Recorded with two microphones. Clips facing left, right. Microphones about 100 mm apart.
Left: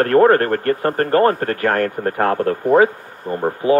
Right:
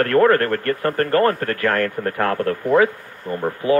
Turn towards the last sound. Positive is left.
turn(degrees=25)  # may be behind; listen again after turning